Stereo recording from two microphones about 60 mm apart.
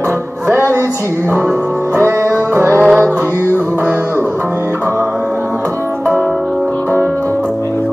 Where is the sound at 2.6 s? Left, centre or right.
Right.